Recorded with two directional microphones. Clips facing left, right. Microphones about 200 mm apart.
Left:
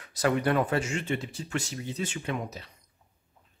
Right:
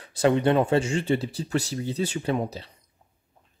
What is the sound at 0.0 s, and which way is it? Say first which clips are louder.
Speech: right 5 dB; 25° right (ahead or behind).